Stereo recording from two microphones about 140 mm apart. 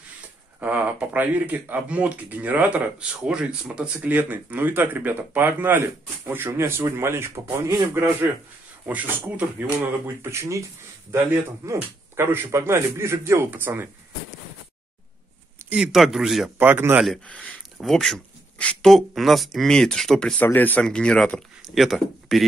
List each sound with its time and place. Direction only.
0.6 s speech: 10° right (ahead or behind)
10.2 s speech: 20° right (ahead or behind)
15.7 s speech: 5° right (ahead or behind)
16.5 s speech: 15° right (ahead or behind)
17.0 s speech: 5° left (ahead or behind)